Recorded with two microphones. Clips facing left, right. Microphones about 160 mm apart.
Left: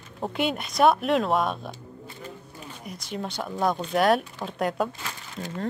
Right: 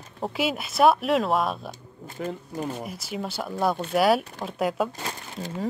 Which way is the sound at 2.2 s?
80° right.